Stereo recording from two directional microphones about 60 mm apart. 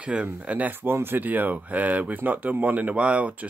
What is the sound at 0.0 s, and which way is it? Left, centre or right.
Speech, right.